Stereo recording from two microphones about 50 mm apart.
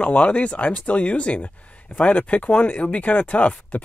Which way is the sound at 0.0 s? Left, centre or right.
Left.